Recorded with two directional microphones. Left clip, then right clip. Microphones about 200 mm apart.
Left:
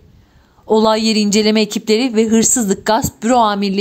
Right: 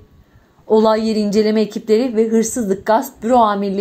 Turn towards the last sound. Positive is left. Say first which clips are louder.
# even
turn(degrees=45)  # may be behind; listen again after turning